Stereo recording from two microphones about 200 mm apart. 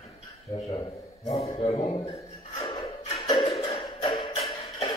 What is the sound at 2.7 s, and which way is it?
Music, 25° left (ahead or behind).